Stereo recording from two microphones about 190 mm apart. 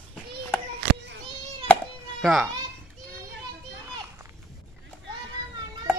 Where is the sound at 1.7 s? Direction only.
5° left (ahead or behind).